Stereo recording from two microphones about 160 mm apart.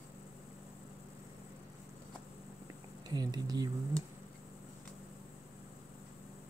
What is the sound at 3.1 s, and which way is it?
Speech, 25° right (ahead or behind).